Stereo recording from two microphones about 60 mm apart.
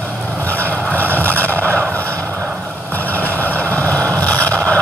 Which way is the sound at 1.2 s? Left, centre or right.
Left.